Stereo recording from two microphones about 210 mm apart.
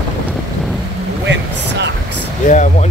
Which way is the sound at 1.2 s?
60° right (ahead or behind).